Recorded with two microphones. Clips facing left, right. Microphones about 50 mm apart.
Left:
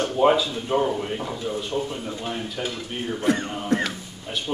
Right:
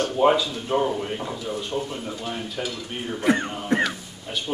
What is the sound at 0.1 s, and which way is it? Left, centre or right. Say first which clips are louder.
Speech: left 1 dB; centre.